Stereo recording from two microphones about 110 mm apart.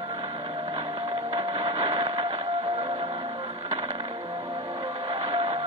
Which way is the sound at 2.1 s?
45° right (ahead or behind).